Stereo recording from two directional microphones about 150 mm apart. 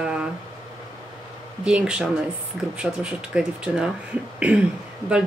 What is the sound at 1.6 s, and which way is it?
Speech, 5° right (ahead or behind).